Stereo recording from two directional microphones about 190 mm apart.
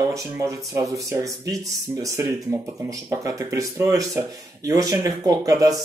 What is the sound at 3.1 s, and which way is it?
Speech, 15° right (ahead or behind).